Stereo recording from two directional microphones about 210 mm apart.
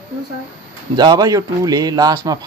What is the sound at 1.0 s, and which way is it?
Speech, 20° right (ahead or behind).